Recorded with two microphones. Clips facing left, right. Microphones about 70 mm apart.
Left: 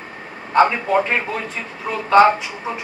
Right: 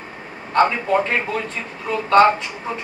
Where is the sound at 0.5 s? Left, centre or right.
Centre.